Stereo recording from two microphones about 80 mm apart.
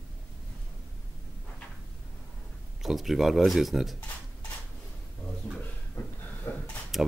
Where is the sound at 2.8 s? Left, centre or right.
Centre.